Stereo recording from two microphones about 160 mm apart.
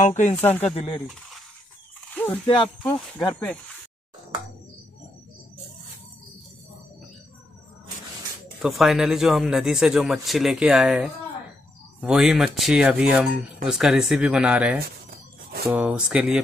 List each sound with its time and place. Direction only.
0.4 s speech: 10° left (ahead or behind)
2.1 s a sound: 10° left (ahead or behind)
2.4 s speech: 35° left (ahead or behind)
2.8 s speech: 10° left (ahead or behind)
8.6 s speech: centre (ahead or behind)